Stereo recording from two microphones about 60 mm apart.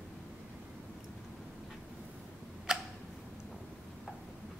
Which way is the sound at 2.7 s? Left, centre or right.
Centre.